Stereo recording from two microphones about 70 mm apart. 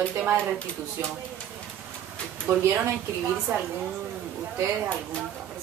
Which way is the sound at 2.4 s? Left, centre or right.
Right.